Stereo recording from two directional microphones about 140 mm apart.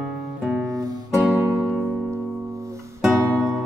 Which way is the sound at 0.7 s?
25° right (ahead or behind).